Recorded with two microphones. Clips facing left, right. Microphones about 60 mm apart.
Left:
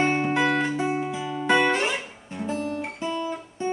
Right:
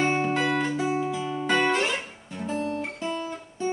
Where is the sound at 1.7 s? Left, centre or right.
Centre.